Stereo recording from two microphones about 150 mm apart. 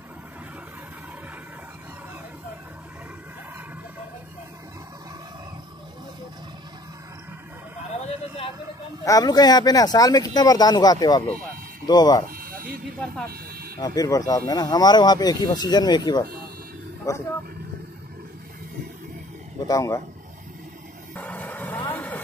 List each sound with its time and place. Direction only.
9.0 s speech: 25° left (ahead or behind)
12.3 s a sound: 75° right (ahead or behind)
13.7 s speech: 25° left (ahead or behind)
19.7 s speech: 25° left (ahead or behind)
21.1 s a sound: 10° left (ahead or behind)
21.9 s vehicle: 10° left (ahead or behind)